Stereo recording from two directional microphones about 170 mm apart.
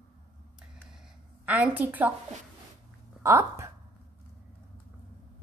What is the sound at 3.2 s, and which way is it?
Speech, 15° right (ahead or behind).